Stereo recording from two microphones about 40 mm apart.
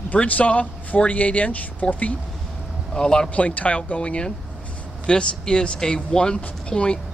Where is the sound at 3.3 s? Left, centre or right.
Left.